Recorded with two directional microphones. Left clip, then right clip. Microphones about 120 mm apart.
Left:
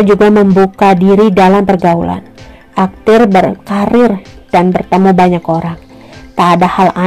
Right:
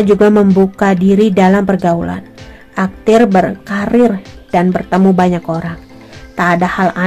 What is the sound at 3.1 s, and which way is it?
Speech, 5° left (ahead or behind).